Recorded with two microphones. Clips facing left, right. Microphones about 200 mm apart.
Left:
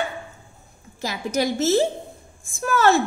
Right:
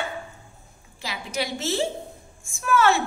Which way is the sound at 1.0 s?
45° left (ahead or behind).